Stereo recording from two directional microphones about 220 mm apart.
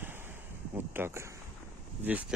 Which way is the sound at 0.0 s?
10° right (ahead or behind).